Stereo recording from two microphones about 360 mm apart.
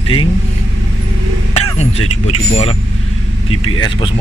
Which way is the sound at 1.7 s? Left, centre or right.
Centre.